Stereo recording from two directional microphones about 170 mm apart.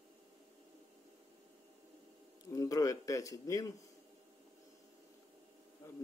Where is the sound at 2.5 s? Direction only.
20° left (ahead or behind).